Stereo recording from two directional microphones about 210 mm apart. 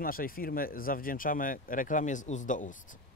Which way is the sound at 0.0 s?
45° left (ahead or behind).